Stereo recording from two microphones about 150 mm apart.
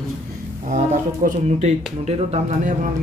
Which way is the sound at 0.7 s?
60° right (ahead or behind).